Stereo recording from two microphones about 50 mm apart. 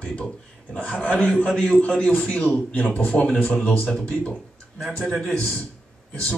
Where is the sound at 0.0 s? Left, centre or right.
Left.